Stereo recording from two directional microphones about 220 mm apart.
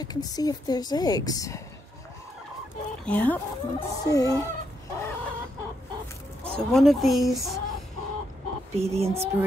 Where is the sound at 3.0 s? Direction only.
5° left (ahead or behind).